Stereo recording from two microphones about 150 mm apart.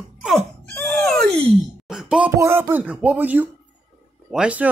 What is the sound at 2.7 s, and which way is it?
Speech, 10° right (ahead or behind).